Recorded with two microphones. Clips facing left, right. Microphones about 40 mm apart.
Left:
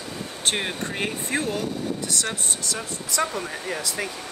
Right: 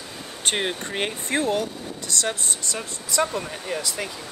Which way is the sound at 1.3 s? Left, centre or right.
Right.